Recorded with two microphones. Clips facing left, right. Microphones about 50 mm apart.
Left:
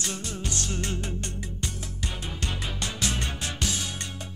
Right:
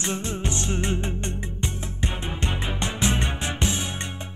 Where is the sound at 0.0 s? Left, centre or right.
Right.